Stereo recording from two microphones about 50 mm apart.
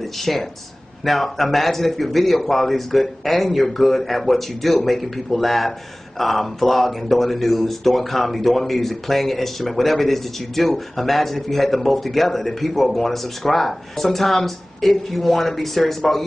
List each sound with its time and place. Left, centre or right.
0.2 s speech: centre